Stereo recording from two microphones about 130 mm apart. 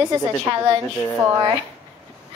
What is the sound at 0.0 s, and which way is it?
Speech, 25° right (ahead or behind).